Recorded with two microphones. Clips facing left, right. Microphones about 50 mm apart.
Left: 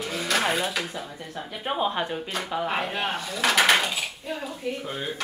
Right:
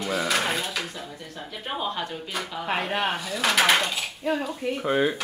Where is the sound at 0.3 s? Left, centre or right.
Centre.